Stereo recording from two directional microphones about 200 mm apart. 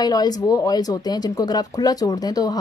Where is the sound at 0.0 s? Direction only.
20° left (ahead or behind).